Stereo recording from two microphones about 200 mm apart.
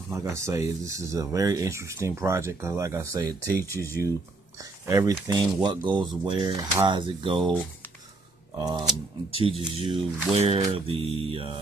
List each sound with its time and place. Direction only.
0.1 s speech: 15° right (ahead or behind)
4.8 s speech: 15° right (ahead or behind)
8.5 s speech: 20° right (ahead or behind)